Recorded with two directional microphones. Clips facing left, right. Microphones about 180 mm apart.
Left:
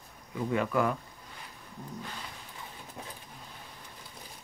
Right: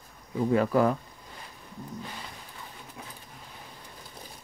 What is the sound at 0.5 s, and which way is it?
Speech, 35° right (ahead or behind).